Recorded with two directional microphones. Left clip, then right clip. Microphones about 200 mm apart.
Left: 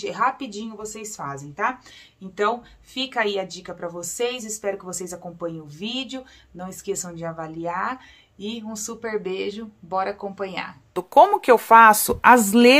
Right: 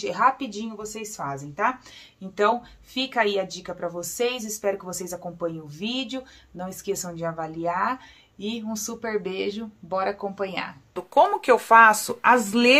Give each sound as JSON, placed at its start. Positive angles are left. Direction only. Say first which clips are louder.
{"t": 0.0, "sound": "speech", "louder": "right 1 dB", "side_deg": 0}
{"t": 11.0, "sound": "speech", "louder": "left 5 dB", "side_deg": 35}